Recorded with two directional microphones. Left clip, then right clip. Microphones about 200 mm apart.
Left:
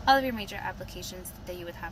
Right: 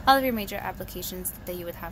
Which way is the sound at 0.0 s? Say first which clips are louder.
Right 3 dB; 50° right (ahead or behind).